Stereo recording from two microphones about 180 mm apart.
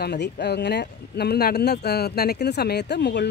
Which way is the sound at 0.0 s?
70° left (ahead or behind).